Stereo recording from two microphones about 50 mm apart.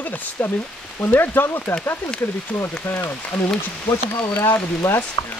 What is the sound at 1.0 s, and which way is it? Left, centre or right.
Speech, left.